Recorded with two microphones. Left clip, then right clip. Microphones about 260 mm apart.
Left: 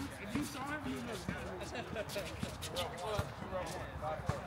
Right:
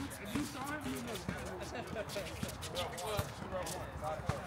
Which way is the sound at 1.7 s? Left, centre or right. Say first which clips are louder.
Left 1 dB; centre.